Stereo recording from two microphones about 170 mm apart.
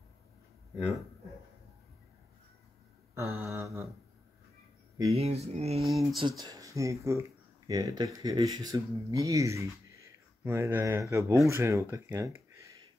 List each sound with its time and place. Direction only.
3.2 s speech: 15° right (ahead or behind)
5.1 s speech: 35° right (ahead or behind)
5.9 s speech: centre (ahead or behind)
6.2 s speech: 25° right (ahead or behind)